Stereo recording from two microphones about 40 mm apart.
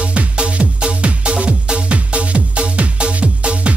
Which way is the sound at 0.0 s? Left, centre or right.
Right.